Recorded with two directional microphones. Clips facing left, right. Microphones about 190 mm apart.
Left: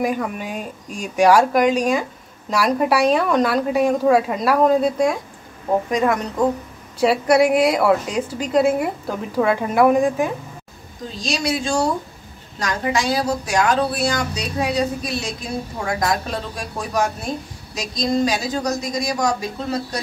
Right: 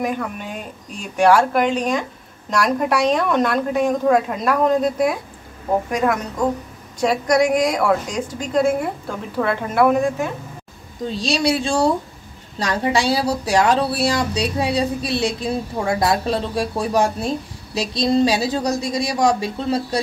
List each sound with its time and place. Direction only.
0.0 s a woman's voice: 10° left (ahead or behind)
7.0 s a woman's voice: 5° left (ahead or behind)
11.1 s a woman's voice: 30° right (ahead or behind)